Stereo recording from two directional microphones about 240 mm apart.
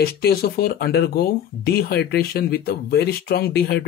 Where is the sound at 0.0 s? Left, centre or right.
Left.